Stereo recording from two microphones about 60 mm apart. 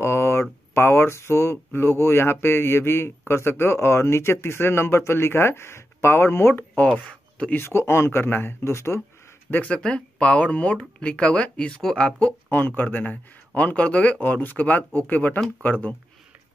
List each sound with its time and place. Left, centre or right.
0.0 s speech: left
7.1 s a sound: centre
7.5 s speech: left
9.7 s speech: centre
12.4 s speech: left